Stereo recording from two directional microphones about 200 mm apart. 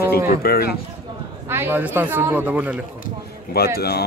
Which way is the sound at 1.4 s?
10° right (ahead or behind).